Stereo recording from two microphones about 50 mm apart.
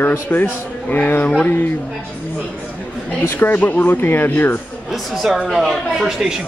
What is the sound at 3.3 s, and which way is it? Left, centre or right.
Speech, left.